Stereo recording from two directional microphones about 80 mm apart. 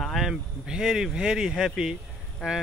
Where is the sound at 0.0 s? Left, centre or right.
Centre.